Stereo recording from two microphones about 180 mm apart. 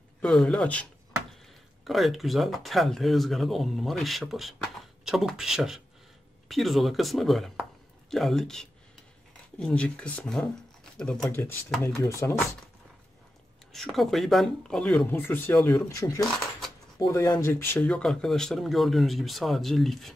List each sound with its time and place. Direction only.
0.2 s speech: 5° left (ahead or behind)
1.9 s speech: centre (ahead or behind); by 12.4 s 15° left (ahead or behind)
13.7 s speech: centre (ahead or behind)
15.9 s speech: 20° left (ahead or behind); by 20.2 s centre (ahead or behind)